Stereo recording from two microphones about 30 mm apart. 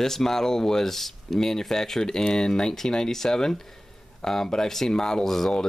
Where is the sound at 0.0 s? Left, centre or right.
Centre.